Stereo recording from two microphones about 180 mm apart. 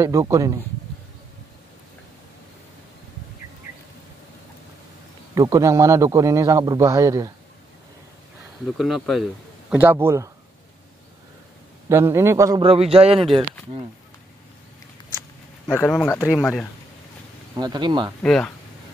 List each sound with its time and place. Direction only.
0.0 s a man's voice: 15° right (ahead or behind)
5.3 s a man's voice: 20° right (ahead or behind)
8.6 s a man's voice: centre (ahead or behind); by 10.3 s 15° right (ahead or behind)
11.9 s a man's voice: 15° right (ahead or behind)
12.6 s a man's voice: 30° right (ahead or behind)
15.6 s a man's voice: 10° left (ahead or behind)
17.6 s speech: 25° right (ahead or behind)
18.2 s a man's voice: 5° left (ahead or behind)